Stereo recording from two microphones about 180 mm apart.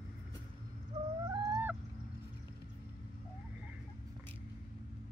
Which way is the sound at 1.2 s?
25° right (ahead or behind).